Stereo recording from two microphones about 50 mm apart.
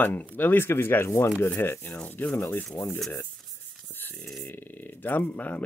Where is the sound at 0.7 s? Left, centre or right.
Left.